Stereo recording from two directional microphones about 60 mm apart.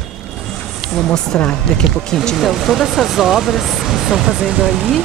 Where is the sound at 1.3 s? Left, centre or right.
Left.